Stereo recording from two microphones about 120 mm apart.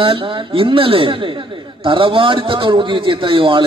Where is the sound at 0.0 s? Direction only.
50° right (ahead or behind).